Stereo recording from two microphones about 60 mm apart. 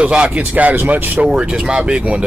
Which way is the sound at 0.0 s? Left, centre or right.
Centre.